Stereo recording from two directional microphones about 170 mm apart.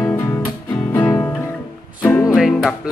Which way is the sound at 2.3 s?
Centre (ahead or behind).